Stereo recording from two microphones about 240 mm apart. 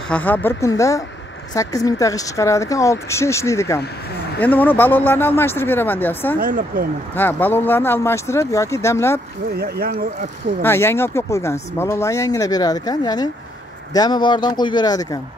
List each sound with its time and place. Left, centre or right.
0.1 s speech: centre
6.4 s speech: right
7.2 s speech: centre
9.6 s speech: right
10.6 s speech: centre